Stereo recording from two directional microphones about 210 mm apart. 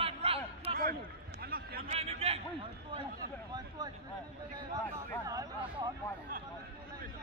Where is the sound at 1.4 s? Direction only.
45° right (ahead or behind).